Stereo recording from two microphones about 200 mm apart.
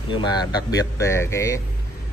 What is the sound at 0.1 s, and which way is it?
Speech, 20° left (ahead or behind).